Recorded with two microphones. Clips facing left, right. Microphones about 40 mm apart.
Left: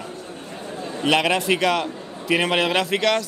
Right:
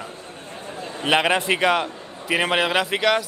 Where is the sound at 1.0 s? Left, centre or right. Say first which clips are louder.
Even; centre.